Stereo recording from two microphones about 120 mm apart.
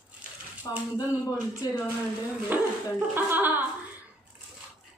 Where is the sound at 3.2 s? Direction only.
15° right (ahead or behind).